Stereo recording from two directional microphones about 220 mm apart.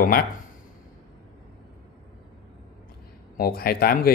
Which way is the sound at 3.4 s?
45° left (ahead or behind).